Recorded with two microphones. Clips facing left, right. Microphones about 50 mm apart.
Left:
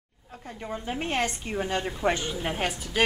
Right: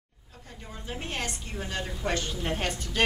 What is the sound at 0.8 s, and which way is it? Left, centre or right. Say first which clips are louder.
A woman's voice: left 6 dB; left.